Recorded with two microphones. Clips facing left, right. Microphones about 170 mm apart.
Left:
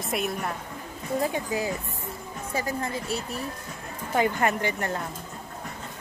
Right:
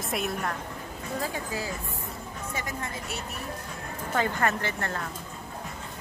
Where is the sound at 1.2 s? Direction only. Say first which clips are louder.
Left 6 dB; 20° left (ahead or behind).